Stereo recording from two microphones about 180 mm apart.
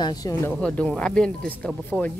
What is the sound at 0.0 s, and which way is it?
Speech, 20° left (ahead or behind).